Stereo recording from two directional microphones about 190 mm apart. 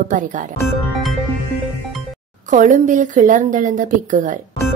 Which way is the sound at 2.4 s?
40° right (ahead or behind).